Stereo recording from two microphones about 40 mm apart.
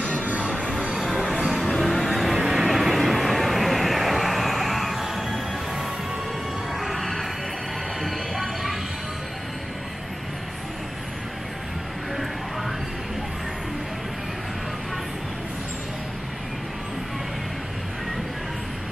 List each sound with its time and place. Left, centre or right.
0.2 s music: right
1.0 s music: centre
2.0 s vehicle: centre
6.8 s music: centre